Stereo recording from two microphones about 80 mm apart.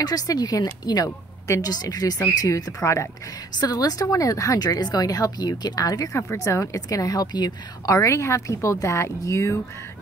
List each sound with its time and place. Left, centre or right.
0.0 s a woman's voice: left
3.5 s a woman's voice: left
6.3 s a woman's voice: left
7.9 s a woman's voice: left